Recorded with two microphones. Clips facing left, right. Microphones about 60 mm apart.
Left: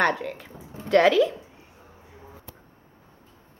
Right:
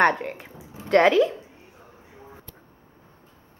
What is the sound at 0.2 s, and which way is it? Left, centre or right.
Speech, right.